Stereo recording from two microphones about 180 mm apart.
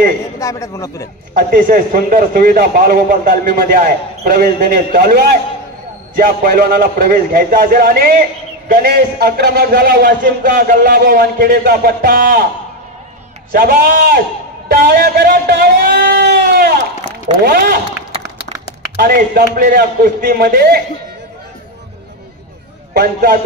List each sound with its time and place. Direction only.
0.4 s a man's voice: 15° left (ahead or behind)
1.3 s a man's voice: 50° right (ahead or behind)
13.5 s a man's voice: 55° right (ahead or behind)
18.9 s a man's voice: 60° right (ahead or behind)
22.9 s a man's voice: 55° right (ahead or behind)